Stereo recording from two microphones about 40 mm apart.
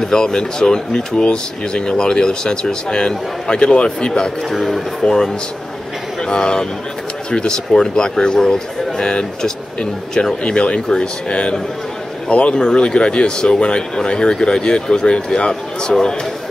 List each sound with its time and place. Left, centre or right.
0.0 s speech: centre
4.6 s speech: centre; by 10.8 s left
10.9 s speech: centre
12.3 s speech: left; by 16.2 s centre